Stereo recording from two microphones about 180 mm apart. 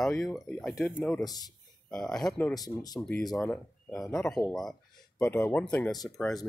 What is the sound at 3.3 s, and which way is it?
Speech, centre (ahead or behind).